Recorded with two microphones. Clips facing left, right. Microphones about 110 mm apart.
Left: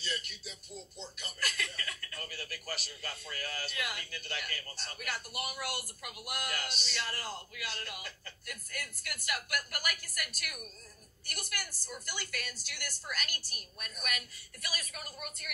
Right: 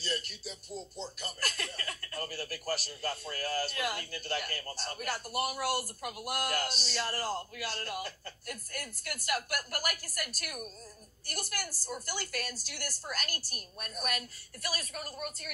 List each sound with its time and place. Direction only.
0.0 s speech: 40° right (ahead or behind)